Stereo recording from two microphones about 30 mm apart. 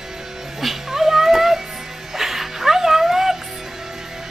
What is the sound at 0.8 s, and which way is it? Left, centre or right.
Cat, centre.